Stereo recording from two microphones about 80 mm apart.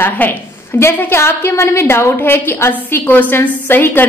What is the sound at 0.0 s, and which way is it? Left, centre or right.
A woman's voice, left.